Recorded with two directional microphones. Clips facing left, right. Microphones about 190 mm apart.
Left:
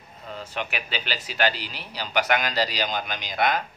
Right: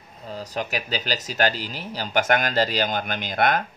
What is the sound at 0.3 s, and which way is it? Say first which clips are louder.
Speech: right 3 dB; 40° right (ahead or behind).